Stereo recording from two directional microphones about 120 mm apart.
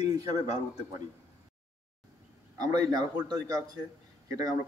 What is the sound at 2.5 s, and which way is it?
A man's voice, 35° right (ahead or behind).